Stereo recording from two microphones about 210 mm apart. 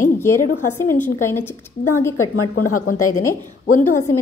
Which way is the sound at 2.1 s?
90° left.